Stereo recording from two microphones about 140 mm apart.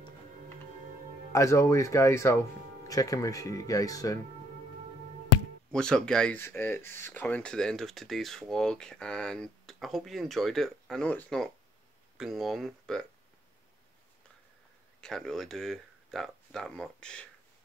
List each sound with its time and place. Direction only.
1.3 s speech: 20° left (ahead or behind)
5.7 s speech: 5° left (ahead or behind)
15.0 s speech: 5° left (ahead or behind)